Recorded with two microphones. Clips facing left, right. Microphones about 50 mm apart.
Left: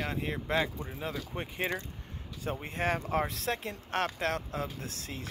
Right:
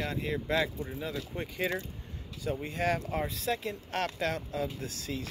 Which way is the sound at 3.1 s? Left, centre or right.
Left.